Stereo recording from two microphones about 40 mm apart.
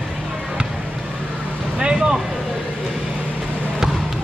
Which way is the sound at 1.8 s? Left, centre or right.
Centre.